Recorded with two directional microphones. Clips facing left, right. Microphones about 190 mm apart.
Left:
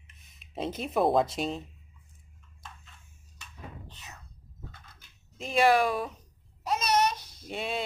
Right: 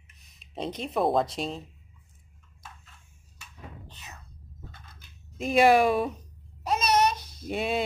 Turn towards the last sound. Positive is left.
turn(degrees=-10)  # may be behind; listen again after turning